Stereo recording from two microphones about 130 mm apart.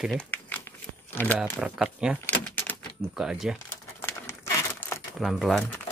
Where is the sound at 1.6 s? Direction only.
5° right (ahead or behind).